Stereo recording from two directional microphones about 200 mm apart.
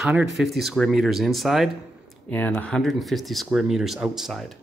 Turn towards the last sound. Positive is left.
turn(degrees=0)  # may be behind; listen again after turning